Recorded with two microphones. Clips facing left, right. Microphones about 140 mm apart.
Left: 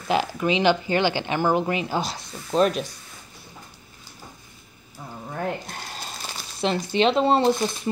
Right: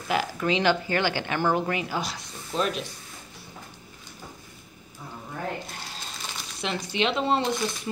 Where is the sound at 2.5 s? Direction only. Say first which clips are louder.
Left 8 dB; 40° left (ahead or behind).